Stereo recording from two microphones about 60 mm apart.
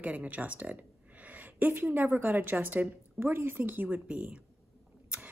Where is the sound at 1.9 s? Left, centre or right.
Right.